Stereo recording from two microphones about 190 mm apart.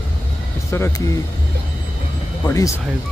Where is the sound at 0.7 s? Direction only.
15° left (ahead or behind).